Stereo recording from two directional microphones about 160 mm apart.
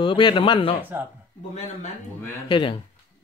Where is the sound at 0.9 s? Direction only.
15° right (ahead or behind).